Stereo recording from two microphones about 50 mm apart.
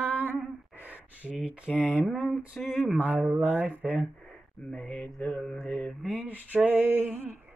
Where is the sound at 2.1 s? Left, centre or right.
Right.